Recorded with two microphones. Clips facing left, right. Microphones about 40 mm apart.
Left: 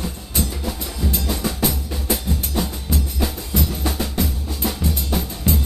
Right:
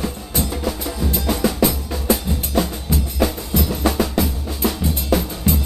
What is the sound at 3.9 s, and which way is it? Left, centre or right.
Drum, right.